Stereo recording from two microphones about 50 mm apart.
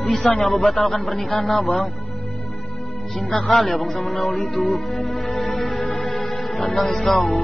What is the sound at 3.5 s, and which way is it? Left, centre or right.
Speech, centre.